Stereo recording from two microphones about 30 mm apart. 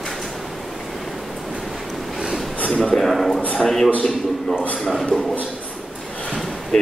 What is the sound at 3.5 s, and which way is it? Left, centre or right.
Speech, centre.